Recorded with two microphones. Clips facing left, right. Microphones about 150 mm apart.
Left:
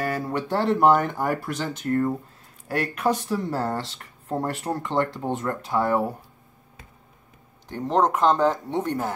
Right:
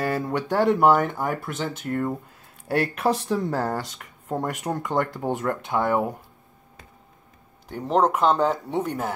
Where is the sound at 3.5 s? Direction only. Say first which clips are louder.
Right 1 dB; 15° right (ahead or behind).